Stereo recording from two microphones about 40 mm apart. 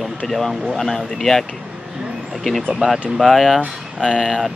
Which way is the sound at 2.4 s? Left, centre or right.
Centre.